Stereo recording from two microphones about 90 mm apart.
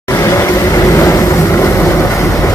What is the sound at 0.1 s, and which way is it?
Vehicle, 35° left (ahead or behind).